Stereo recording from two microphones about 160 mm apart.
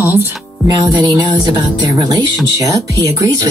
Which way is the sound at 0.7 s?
25° right (ahead or behind).